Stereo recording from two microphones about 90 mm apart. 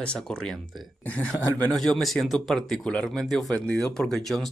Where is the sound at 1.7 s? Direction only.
5° left (ahead or behind).